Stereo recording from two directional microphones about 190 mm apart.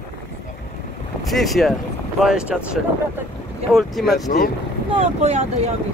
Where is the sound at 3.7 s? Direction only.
Centre (ahead or behind).